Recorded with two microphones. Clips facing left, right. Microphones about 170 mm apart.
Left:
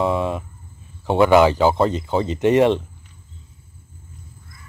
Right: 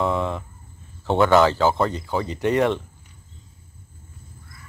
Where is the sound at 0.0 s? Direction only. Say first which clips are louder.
Left 3 dB; 20° left (ahead or behind).